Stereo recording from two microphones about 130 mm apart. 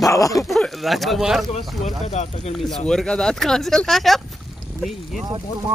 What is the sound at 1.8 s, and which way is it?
Speech, 60° left (ahead or behind).